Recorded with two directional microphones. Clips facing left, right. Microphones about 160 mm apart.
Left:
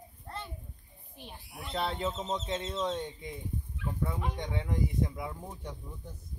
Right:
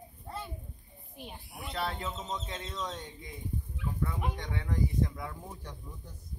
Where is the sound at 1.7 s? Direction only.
25° left (ahead or behind).